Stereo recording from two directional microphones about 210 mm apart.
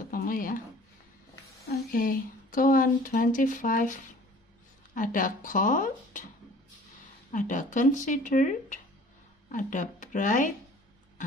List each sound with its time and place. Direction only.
0.1 s a sound: 40° left (ahead or behind)
1.9 s speech: 40° left (ahead or behind)
7.3 s speech: 40° left (ahead or behind)